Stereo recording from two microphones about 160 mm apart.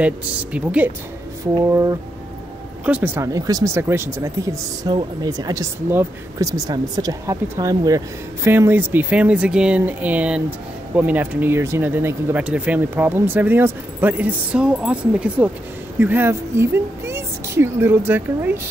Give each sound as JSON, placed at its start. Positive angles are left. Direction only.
{"t": 0.0, "sound": "speech", "side_deg": -10}
{"t": 1.5, "sound": "speech", "side_deg": -20}
{"t": 3.3, "sound": "speech", "side_deg": -20}